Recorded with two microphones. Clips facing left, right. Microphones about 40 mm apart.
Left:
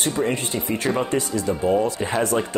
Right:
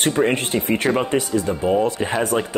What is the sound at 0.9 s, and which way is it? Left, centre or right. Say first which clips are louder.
Speech: right 1 dB; right.